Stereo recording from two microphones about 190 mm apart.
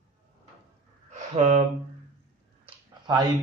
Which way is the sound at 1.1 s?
40° right (ahead or behind).